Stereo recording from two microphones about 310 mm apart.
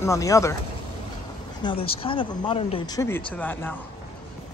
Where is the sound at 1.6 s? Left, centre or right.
Centre.